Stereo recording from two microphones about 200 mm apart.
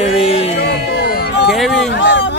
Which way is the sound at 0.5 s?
55° left (ahead or behind).